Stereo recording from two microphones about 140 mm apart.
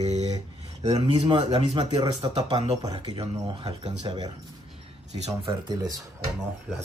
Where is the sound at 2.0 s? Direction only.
30° right (ahead or behind).